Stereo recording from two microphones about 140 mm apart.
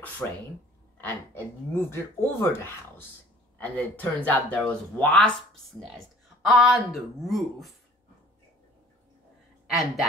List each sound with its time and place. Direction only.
0.2 s speech: 5° left (ahead or behind)
9.7 s a woman's voice: centre (ahead or behind)